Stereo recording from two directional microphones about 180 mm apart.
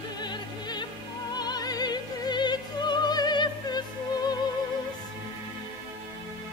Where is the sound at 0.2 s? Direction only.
25° left (ahead or behind).